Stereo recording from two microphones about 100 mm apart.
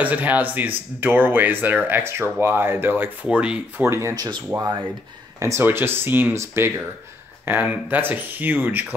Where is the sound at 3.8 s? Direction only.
25° right (ahead or behind).